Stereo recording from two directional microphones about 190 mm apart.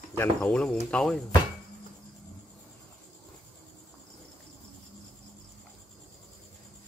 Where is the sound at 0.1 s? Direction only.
10° left (ahead or behind).